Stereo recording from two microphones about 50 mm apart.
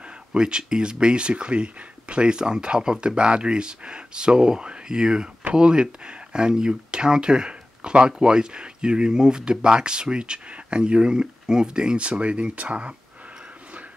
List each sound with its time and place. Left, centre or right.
0.3 s speech: centre